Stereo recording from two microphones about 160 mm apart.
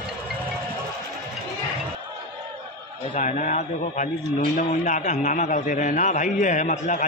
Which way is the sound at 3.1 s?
50° left (ahead or behind).